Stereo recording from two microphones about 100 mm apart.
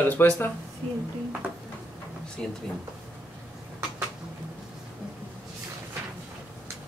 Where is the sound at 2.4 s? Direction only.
10° left (ahead or behind).